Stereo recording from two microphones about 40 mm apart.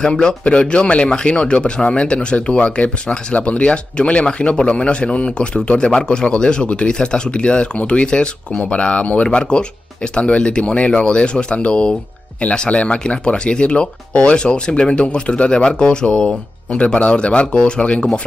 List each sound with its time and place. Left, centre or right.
0.0 s a man's voice: centre
0.4 s a man's voice: left
16.8 s a man's voice: left